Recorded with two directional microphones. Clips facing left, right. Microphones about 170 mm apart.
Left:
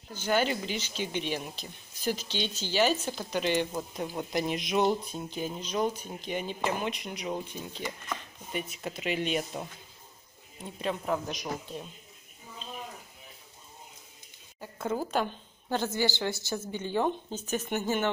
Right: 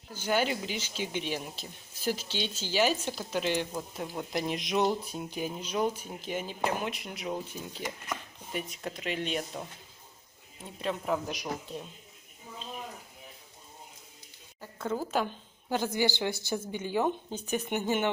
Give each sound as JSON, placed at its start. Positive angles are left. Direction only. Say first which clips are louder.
{"t": 0.1, "sound": "speech", "louder": "left 1 dB", "side_deg": -10}
{"t": 5.0, "sound": "speech", "louder": "even", "side_deg": -10}
{"t": 14.6, "sound": "a sound", "louder": "left 1 dB", "side_deg": 10}
{"t": 15.7, "sound": "speech", "louder": "even", "side_deg": -10}